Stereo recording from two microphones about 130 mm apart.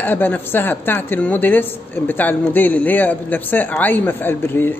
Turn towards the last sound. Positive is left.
turn(degrees=15)  # may be behind; listen again after turning